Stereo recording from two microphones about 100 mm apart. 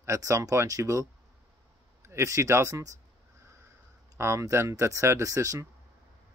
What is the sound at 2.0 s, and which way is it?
Speech, 30° right (ahead or behind).